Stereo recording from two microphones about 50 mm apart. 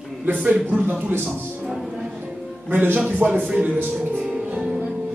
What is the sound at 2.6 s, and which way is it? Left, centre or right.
Speech, right.